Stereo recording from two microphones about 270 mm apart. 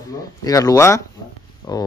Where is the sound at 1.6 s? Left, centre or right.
Centre.